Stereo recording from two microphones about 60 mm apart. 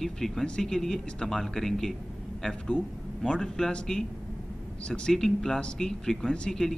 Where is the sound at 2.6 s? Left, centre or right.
Centre.